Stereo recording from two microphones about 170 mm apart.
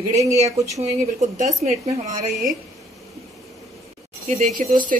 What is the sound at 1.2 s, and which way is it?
Speech, 45° right (ahead or behind).